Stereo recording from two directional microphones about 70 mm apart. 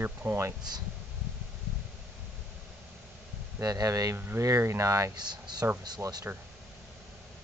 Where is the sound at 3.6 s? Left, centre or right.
Right.